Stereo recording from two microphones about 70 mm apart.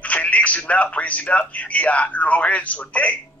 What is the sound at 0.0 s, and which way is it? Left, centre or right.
A man's voice, centre.